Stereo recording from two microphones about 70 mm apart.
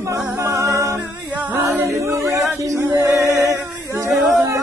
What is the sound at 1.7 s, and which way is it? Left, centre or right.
Choir, right.